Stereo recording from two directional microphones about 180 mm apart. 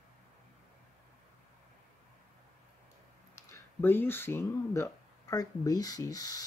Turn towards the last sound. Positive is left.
turn(degrees=20)  # may be behind; listen again after turning